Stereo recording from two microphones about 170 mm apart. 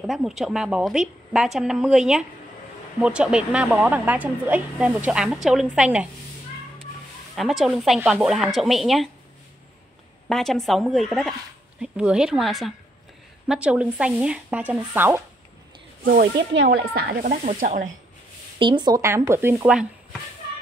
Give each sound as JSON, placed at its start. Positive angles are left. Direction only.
{"t": 0.0, "sound": "a woman's voice", "side_deg": -5}
{"t": 7.3, "sound": "a woman's voice", "side_deg": 0}
{"t": 10.2, "sound": "a woman's voice", "side_deg": 0}
{"t": 16.1, "sound": "speech", "side_deg": -70}
{"t": 17.2, "sound": "speech", "side_deg": -50}
{"t": 18.6, "sound": "speech", "side_deg": -25}